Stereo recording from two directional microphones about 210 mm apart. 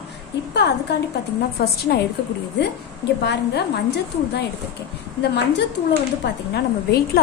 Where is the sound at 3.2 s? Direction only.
55° left (ahead or behind).